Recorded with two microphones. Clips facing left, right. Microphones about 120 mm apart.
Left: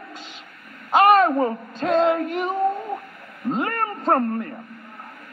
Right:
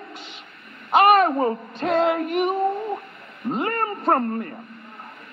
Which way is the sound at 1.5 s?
20° right (ahead or behind).